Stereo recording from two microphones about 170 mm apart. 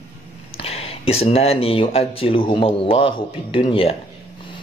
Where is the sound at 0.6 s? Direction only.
35° left (ahead or behind).